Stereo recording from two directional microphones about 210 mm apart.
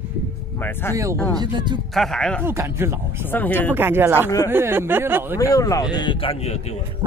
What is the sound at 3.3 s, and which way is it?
Speech, 10° left (ahead or behind).